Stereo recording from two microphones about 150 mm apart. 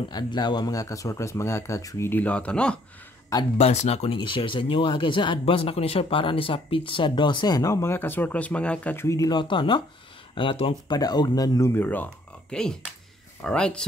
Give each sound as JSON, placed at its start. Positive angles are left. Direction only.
{"t": 0.1, "sound": "speech", "side_deg": 30}
{"t": 3.5, "sound": "speech", "side_deg": 45}